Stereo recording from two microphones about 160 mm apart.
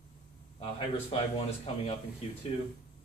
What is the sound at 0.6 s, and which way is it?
Speech, 40° left (ahead or behind).